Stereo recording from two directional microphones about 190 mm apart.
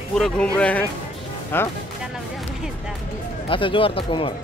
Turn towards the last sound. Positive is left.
turn(degrees=30)  # may be behind; listen again after turning